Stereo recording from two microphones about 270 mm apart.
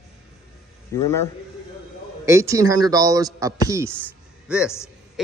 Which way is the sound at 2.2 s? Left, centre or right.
Centre.